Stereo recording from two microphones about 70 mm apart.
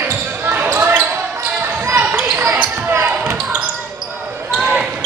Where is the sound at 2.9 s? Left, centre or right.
Right.